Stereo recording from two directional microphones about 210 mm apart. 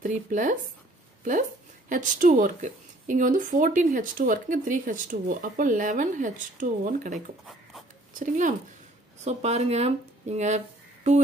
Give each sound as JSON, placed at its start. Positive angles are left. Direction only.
{"t": 0.0, "sound": "speech", "side_deg": -35}
{"t": 1.9, "sound": "speech", "side_deg": -40}